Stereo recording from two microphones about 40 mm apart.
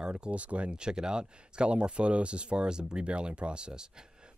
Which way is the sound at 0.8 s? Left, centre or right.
Centre.